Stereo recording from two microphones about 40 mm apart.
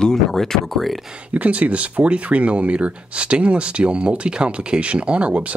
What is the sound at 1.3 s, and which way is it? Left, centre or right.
Speech, right.